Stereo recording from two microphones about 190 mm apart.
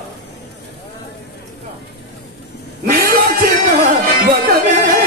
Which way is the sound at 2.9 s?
50° right (ahead or behind).